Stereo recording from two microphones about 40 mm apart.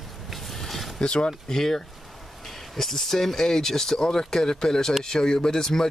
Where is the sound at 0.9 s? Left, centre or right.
Left.